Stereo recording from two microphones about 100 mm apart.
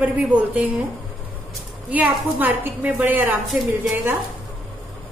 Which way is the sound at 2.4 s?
20° right (ahead or behind).